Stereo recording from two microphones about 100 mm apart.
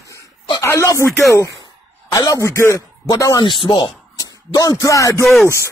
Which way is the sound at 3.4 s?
50° left (ahead or behind).